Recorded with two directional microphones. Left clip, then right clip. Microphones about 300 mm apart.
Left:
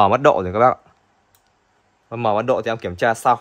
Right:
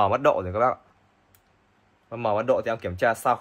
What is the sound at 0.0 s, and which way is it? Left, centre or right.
Speech, left.